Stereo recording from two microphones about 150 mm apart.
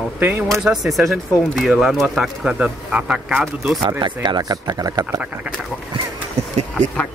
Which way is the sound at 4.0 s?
30° right (ahead or behind).